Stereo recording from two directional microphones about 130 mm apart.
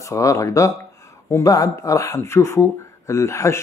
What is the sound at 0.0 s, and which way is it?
Speech, 25° left (ahead or behind).